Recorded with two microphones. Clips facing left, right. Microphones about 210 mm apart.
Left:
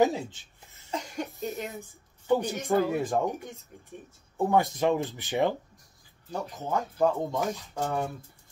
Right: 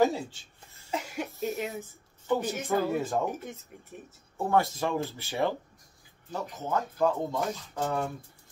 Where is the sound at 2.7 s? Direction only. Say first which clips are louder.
Left 3 dB; 15° left (ahead or behind).